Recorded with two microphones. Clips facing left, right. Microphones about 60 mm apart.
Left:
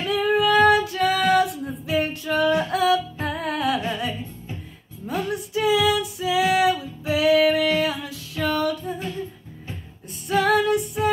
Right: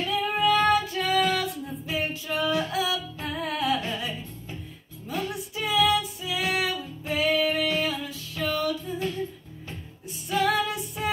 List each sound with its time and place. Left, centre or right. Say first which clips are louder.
0.1 s child singing: left 5 dB; left
1.9 s female singing: left 7 dB; left
5.0 s music: left 5 dB; left
6.5 s female singing: left 8 dB; left
10.2 s female singing: left 5 dB; left